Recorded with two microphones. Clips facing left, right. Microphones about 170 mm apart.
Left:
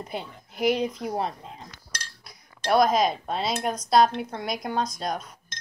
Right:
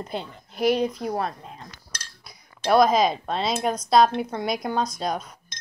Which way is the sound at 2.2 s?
Centre (ahead or behind).